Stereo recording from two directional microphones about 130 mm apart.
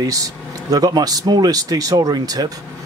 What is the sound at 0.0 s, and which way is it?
Speech, 25° right (ahead or behind).